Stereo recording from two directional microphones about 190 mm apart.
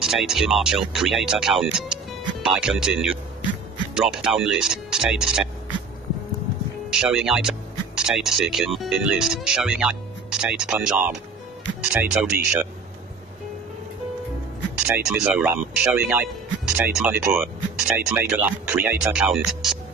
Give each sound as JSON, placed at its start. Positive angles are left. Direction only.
{"t": 0.0, "sound": "speech", "side_deg": 0}
{"t": 6.9, "sound": "speech", "side_deg": -5}
{"t": 15.0, "sound": "speech", "side_deg": -5}